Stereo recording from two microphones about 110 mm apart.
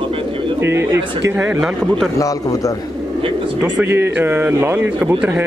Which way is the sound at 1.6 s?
5° right (ahead or behind).